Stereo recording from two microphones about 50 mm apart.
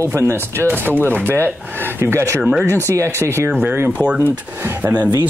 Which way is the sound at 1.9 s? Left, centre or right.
Right.